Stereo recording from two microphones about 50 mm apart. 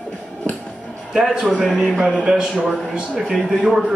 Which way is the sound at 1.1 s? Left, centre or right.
Centre.